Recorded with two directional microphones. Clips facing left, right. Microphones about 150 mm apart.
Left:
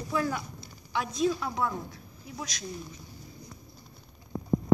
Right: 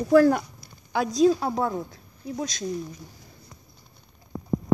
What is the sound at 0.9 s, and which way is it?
Speech, 35° right (ahead or behind).